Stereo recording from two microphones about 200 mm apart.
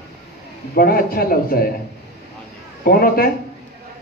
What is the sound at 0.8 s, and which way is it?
Speech, 45° left (ahead or behind).